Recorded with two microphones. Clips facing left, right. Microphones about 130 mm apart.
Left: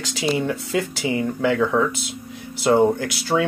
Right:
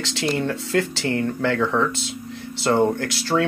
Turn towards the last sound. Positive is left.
turn(degrees=5)  # may be behind; listen again after turning